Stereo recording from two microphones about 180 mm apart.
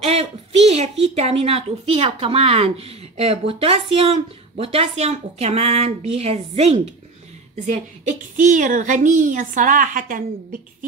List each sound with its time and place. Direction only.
0.0 s a woman's voice: 35° right (ahead or behind)